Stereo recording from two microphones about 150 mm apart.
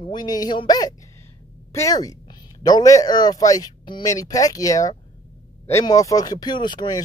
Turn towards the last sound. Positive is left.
turn(degrees=30)  # may be behind; listen again after turning